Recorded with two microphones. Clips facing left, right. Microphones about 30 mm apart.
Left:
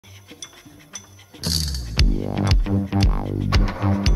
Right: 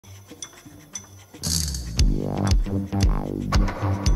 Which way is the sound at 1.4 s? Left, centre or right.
Left.